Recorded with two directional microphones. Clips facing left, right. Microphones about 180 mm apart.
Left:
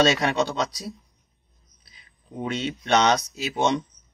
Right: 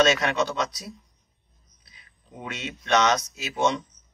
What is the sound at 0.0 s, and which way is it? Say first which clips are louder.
Speech: left 1 dB; 30° left (ahead or behind).